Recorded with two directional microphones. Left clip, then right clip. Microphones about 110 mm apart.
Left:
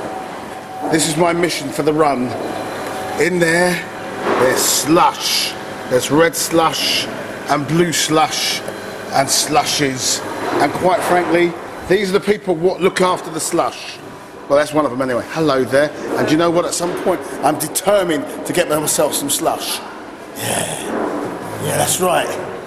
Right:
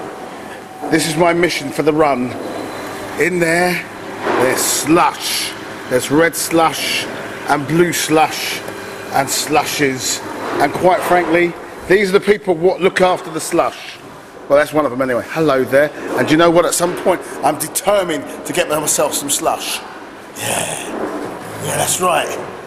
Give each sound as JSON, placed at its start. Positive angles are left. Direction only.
{"t": 0.8, "sound": "a man's voice", "side_deg": -15}
{"t": 3.2, "sound": "a man's voice", "side_deg": -15}
{"t": 17.4, "sound": "a man's voice", "side_deg": 0}